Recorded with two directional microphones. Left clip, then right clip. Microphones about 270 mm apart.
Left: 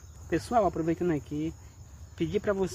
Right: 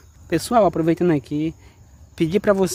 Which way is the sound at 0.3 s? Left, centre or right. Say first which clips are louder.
Right 9 dB; right.